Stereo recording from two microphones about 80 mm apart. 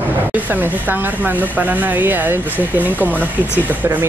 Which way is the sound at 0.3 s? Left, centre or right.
Right.